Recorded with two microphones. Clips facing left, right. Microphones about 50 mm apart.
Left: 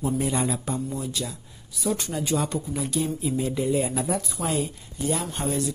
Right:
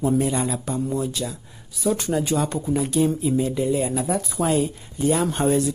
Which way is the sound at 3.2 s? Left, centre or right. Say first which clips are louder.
Right 4 dB; centre.